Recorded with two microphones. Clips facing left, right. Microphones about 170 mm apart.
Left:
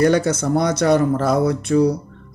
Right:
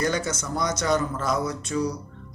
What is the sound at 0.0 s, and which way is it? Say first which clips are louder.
Speech: left 10 dB; 60° left (ahead or behind).